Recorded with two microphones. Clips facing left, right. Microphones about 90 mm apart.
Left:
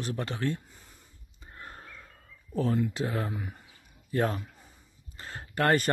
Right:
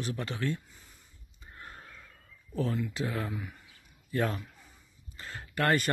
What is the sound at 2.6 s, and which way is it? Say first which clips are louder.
Speech: left 4 dB; 40° left (ahead or behind).